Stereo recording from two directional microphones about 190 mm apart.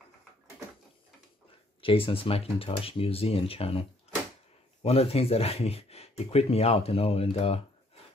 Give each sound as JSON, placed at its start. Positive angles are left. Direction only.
{"t": 1.8, "sound": "speech", "side_deg": 30}
{"t": 4.8, "sound": "speech", "side_deg": 30}